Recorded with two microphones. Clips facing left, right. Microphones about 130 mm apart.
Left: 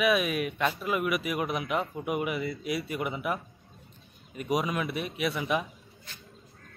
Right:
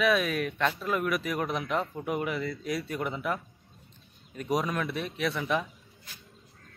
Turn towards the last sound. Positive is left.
turn(degrees=10)  # may be behind; listen again after turning